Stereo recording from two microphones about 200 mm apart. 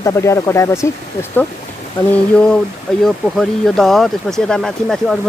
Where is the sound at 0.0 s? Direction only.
15° left (ahead or behind).